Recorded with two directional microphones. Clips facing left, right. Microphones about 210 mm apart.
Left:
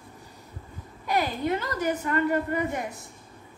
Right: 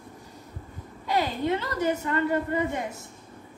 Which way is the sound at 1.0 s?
25° right (ahead or behind).